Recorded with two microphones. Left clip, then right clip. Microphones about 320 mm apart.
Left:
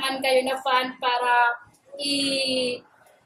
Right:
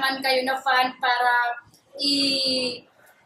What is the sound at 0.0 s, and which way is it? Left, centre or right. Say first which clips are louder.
Speech: even; centre.